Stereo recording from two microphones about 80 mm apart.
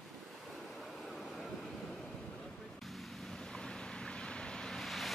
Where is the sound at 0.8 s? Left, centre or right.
Centre.